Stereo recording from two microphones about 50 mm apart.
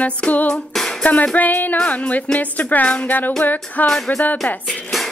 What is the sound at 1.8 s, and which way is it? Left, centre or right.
Music, left.